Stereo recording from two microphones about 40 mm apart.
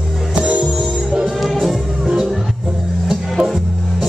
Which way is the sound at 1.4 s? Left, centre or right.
Centre.